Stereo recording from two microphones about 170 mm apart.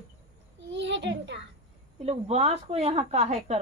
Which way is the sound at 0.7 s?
90° right.